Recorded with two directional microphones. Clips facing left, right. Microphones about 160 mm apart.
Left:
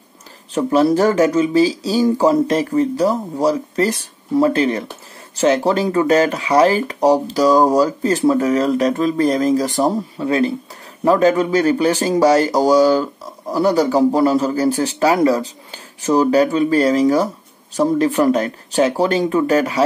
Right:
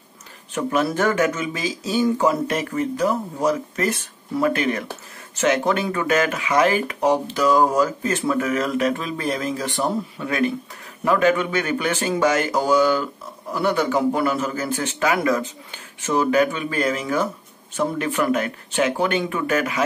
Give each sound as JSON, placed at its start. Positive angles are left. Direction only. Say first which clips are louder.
{"t": 0.6, "sound": "speech", "louder": "left 7 dB", "side_deg": 35}